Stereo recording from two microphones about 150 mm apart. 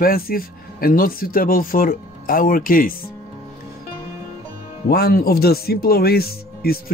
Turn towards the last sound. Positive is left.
turn(degrees=90)